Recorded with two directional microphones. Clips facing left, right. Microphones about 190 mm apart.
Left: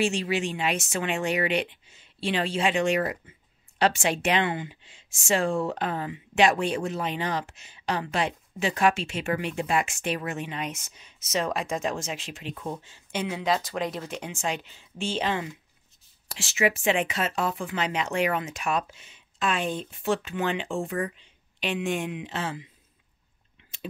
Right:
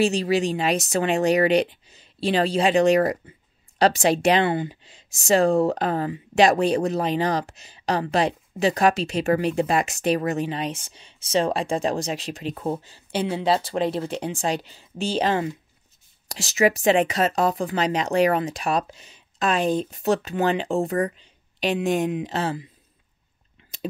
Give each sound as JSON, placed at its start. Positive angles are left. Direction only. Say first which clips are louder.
{"t": 0.0, "sound": "speech", "louder": "right 5 dB", "side_deg": -35}